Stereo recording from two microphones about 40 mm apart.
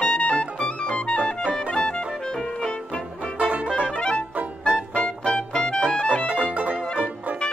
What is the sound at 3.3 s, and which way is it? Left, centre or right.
Music, right.